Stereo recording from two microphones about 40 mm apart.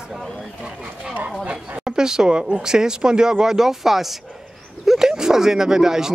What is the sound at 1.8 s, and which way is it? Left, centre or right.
Speech, centre.